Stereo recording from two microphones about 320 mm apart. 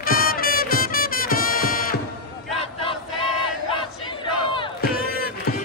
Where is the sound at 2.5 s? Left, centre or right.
Centre.